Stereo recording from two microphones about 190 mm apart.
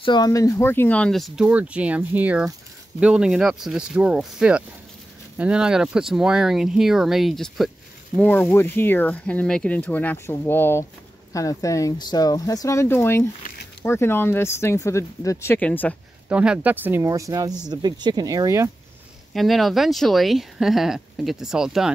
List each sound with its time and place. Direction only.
0.0 s speech: 20° left (ahead or behind)
16.3 s speech: 5° right (ahead or behind)
19.3 s speech: centre (ahead or behind)